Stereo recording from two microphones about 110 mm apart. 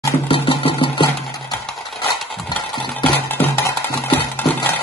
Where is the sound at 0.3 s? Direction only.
50° left (ahead or behind).